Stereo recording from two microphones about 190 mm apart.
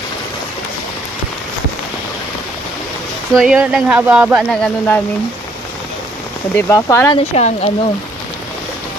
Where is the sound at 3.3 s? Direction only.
Centre (ahead or behind).